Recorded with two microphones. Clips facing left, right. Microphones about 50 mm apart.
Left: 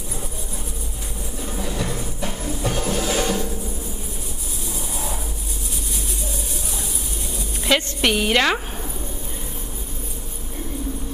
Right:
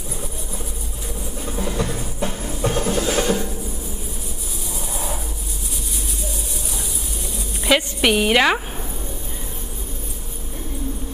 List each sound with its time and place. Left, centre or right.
1.6 s music: right
3.2 s music: right
7.6 s a woman's voice: centre